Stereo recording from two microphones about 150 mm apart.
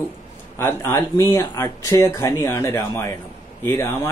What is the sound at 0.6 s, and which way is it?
Speech, 20° left (ahead or behind).